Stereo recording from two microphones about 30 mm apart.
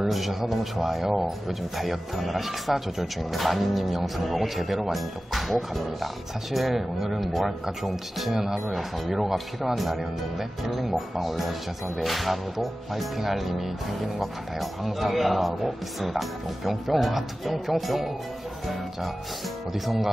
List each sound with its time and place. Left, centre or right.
0.0 s speech: centre